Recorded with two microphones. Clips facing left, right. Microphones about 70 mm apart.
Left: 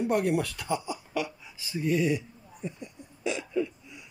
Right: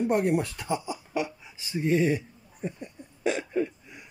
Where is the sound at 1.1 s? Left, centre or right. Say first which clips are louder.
Right 3 dB; right.